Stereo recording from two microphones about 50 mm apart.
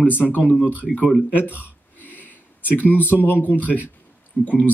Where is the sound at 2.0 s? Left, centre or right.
Left.